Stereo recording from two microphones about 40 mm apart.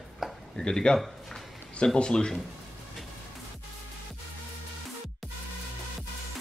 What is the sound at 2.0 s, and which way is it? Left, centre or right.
Dishes, left.